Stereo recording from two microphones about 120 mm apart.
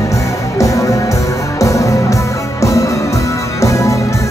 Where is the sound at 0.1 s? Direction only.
25° left (ahead or behind).